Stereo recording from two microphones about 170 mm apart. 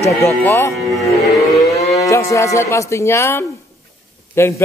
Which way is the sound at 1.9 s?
20° left (ahead or behind).